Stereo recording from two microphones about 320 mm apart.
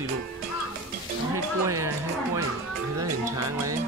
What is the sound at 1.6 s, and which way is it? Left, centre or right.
Speech, centre.